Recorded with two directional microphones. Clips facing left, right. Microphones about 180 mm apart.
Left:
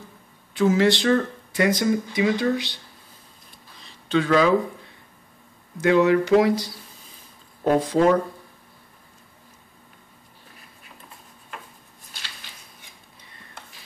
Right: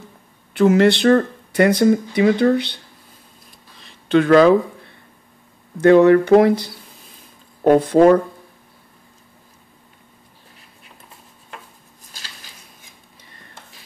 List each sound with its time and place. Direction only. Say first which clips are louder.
0.5 s speech: right 5 dB; 60° right (ahead or behind)
4.1 s speech: right 7 dB; 60° right (ahead or behind)
5.8 s speech: right 7 dB; 55° right (ahead or behind)